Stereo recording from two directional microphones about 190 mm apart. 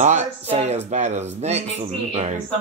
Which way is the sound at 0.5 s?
35° right (ahead or behind).